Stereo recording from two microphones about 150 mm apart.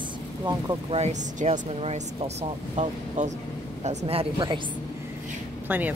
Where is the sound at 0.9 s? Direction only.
50° right (ahead or behind); by 4.6 s 30° right (ahead or behind).